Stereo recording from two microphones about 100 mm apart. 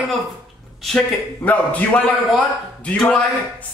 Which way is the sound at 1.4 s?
15° left (ahead or behind).